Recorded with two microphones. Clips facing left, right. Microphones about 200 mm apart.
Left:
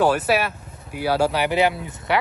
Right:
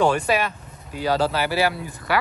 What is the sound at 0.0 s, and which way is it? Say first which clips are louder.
Speech: left 1 dB; 5° left (ahead or behind).